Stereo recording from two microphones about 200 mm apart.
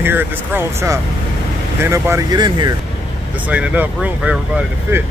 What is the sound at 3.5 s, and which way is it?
Speech, 5° right (ahead or behind).